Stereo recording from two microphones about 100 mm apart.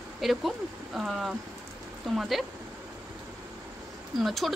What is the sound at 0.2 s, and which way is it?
Speech, centre (ahead or behind).